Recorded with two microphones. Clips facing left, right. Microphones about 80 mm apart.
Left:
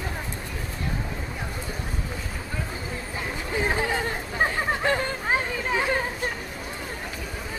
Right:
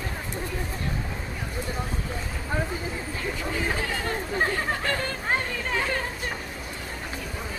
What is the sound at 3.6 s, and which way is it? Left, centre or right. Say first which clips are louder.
Chatter: left 5 dB; left.